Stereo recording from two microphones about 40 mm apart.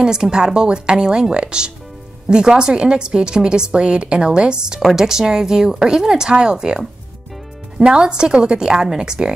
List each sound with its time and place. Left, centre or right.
0.0 s speech: centre
7.8 s speech: right